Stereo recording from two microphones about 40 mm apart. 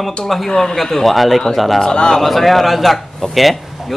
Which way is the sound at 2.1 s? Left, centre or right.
Centre.